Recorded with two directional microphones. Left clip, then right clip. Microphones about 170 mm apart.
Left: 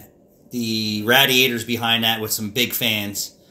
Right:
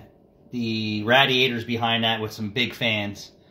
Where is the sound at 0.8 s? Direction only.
15° right (ahead or behind).